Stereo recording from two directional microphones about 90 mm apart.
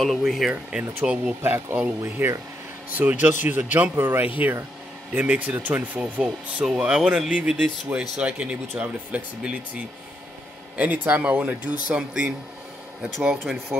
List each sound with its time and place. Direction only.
0.0 s speech: centre (ahead or behind)
1.4 s speech: 25° right (ahead or behind)
10.8 s speech: 20° right (ahead or behind)